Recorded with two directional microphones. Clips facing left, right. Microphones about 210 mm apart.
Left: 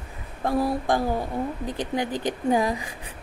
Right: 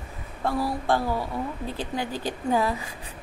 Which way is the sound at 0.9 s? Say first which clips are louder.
Left 1 dB; 15° left (ahead or behind).